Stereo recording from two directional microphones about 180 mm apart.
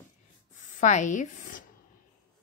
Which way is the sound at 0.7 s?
40° left (ahead or behind).